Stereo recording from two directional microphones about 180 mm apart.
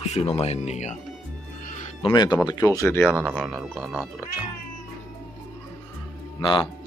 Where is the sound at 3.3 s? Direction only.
5° right (ahead or behind).